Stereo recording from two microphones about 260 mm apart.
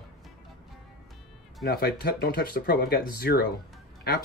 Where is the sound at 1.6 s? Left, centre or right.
Left.